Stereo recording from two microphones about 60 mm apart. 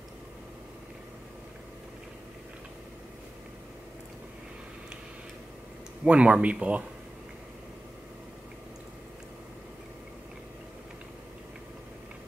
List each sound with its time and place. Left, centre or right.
6.0 s speech: centre